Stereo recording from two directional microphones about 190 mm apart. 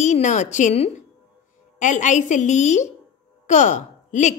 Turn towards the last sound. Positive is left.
turn(degrees=40)  # may be behind; listen again after turning